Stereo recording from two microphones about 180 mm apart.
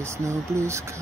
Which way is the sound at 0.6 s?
15° right (ahead or behind).